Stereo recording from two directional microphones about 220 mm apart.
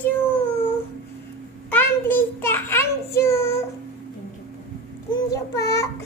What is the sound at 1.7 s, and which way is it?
Child singing, 10° left (ahead or behind).